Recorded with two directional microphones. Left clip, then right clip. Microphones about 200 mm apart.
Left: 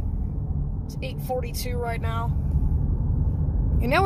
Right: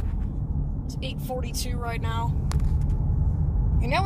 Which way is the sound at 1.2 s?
15° left (ahead or behind).